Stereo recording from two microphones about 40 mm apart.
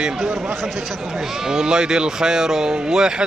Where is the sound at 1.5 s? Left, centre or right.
Centre.